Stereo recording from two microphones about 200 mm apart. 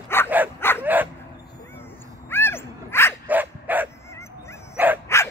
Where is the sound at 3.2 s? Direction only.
10° right (ahead or behind).